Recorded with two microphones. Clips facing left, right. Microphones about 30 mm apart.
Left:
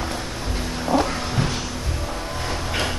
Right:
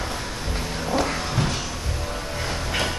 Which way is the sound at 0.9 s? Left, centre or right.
Left.